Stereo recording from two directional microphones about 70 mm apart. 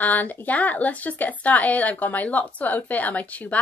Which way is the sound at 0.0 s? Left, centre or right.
Left.